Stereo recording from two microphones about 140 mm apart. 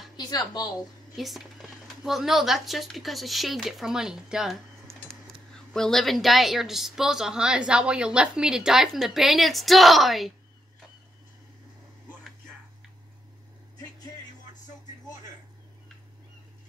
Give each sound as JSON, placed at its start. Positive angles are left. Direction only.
{"t": 0.2, "sound": "a woman's voice", "side_deg": 30}
{"t": 1.1, "sound": "speech", "side_deg": 0}
{"t": 5.7, "sound": "speech", "side_deg": 5}